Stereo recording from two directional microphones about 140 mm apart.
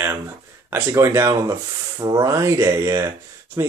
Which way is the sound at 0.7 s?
15° right (ahead or behind).